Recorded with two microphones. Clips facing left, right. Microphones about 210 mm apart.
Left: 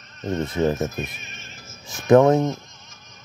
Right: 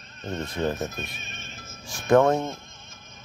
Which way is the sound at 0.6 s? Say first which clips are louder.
Left 5 dB; 5° left (ahead or behind).